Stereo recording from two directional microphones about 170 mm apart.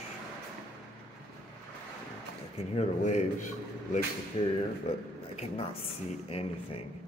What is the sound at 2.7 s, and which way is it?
Speech, 45° left (ahead or behind).